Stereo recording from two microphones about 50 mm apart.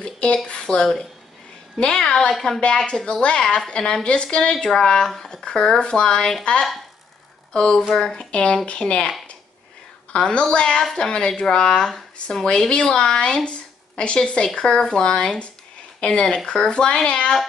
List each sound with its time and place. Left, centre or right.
0.0 s a sound: centre
0.5 s a woman's voice: centre
3.4 s a woman's voice: centre
10.1 s a woman's voice: centre
10.8 s a woman's voice: centre